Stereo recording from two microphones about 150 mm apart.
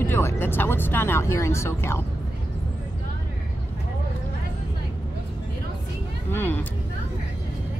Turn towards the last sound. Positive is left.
turn(degrees=15)  # may be behind; listen again after turning